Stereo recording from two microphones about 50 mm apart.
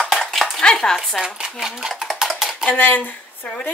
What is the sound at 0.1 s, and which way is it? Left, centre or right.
Dishes, centre.